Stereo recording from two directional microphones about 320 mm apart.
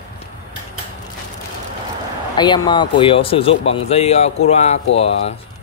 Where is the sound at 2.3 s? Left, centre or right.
Centre.